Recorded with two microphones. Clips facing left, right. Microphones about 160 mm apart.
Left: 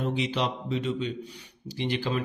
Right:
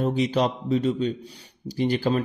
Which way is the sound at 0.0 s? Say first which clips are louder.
Right 6 dB; 45° right (ahead or behind).